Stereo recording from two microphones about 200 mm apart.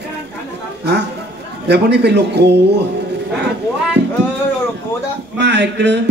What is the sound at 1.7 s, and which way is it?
A man's voice, 55° right (ahead or behind).